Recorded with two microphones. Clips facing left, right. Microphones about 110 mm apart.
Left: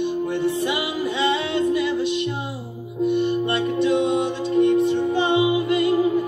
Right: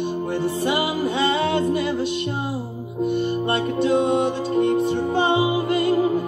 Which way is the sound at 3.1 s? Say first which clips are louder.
Left 1 dB; 35° right (ahead or behind).